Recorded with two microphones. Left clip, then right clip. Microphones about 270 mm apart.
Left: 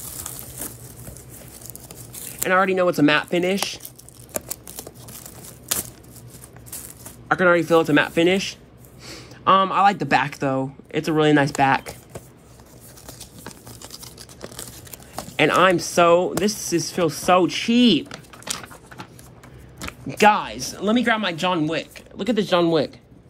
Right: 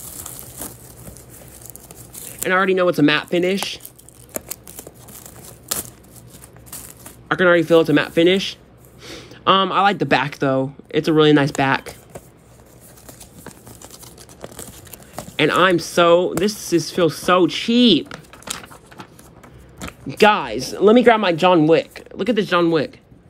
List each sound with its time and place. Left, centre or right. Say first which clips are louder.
0.0 s a sound: even; centre
2.5 s speech: right 2 dB; centre
7.2 s speech: right 2 dB; centre
13.0 s a sound: left 1 dB; centre
14.4 s toothbrush: right 1 dB; centre
15.3 s speech: right 1 dB; centre
19.8 s speech: right 2 dB; centre